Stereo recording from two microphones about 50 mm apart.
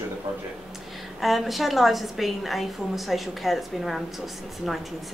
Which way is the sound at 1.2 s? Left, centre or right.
Centre.